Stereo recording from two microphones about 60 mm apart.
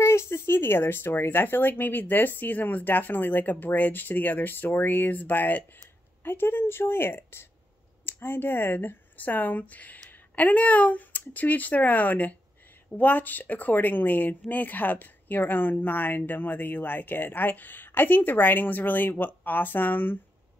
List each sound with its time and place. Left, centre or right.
0.0 s a woman's voice: left